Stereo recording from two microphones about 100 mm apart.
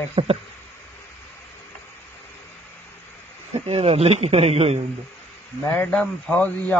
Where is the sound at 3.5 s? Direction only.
80° right.